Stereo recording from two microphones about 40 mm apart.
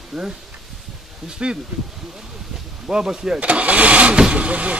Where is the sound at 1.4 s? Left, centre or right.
Right.